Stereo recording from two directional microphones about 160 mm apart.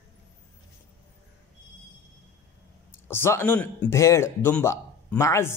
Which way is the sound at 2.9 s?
15° left (ahead or behind).